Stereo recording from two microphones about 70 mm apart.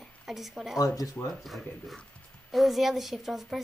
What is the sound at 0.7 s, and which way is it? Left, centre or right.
Speech, left.